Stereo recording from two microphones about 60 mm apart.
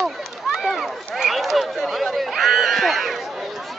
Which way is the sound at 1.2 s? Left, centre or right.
Centre.